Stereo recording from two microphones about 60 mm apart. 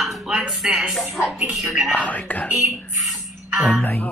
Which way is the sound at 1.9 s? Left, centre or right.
Left.